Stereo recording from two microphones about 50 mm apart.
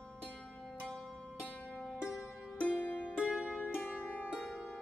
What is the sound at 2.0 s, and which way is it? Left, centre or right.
Music, centre.